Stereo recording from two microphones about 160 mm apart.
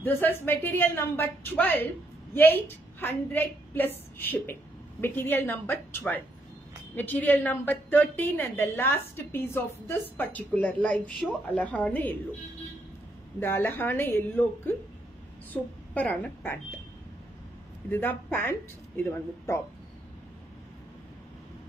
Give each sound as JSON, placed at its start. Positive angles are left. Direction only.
{"t": 0.0, "sound": "a woman's voice", "side_deg": 15}
{"t": 13.4, "sound": "a woman's voice", "side_deg": 15}
{"t": 15.5, "sound": "a woman's voice", "side_deg": 10}
{"t": 17.8, "sound": "a woman's voice", "side_deg": 10}